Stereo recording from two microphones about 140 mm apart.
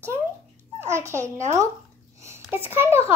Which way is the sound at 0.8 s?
20° right (ahead or behind).